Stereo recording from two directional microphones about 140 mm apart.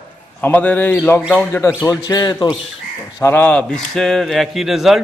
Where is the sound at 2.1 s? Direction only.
30° left (ahead or behind).